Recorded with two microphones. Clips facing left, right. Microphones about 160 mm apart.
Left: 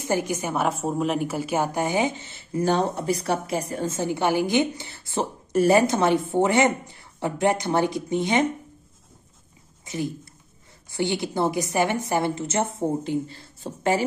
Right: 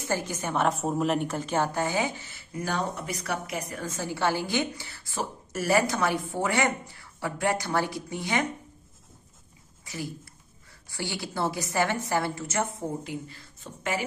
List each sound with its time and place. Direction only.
0.0 s a woman's voice: 15° left (ahead or behind)
9.8 s a woman's voice: 20° left (ahead or behind)